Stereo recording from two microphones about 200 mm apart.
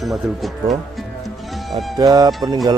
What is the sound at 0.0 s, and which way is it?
Speech, centre (ahead or behind).